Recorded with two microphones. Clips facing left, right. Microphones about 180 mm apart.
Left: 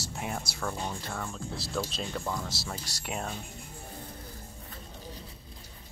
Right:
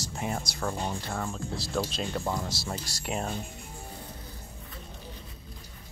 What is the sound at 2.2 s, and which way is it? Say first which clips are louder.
Speech: right 3 dB; 20° right (ahead or behind).